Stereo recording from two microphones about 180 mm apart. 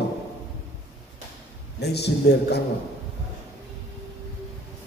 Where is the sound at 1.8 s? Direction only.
65° left (ahead or behind).